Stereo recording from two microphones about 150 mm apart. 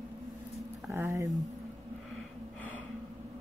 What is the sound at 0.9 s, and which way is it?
Speech, 20° right (ahead or behind).